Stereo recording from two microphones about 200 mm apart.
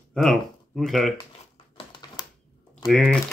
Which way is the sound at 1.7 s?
20° left (ahead or behind).